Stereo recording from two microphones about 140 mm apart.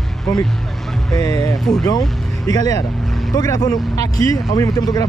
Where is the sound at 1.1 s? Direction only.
25° left (ahead or behind).